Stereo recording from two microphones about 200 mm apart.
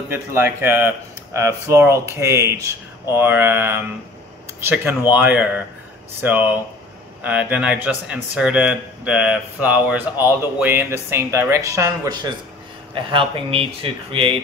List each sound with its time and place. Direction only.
0.1 s speech: 10° right (ahead or behind)